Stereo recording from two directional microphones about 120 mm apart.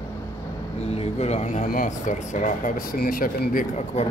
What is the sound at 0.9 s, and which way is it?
Speech, 60° left (ahead or behind).